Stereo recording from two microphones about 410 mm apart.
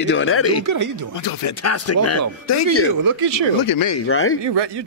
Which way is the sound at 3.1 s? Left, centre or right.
Right.